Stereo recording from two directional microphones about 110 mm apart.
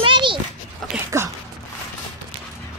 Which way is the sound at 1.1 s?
30° right (ahead or behind).